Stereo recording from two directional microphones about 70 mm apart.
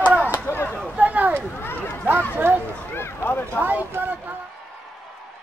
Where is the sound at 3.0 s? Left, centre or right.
Left.